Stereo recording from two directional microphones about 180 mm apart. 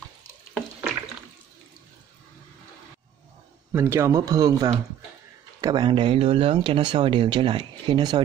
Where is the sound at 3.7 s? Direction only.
15° right (ahead or behind).